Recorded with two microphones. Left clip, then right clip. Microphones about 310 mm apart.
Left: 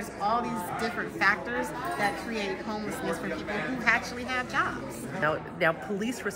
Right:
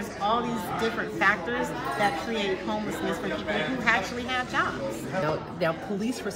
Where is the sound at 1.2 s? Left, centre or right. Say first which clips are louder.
Right 2 dB; centre.